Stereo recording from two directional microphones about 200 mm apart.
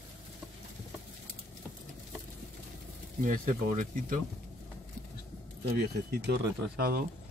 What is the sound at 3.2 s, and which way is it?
Speech, 40° right (ahead or behind).